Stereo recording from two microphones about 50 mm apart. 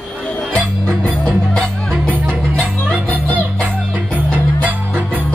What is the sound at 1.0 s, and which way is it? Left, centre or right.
Music, left.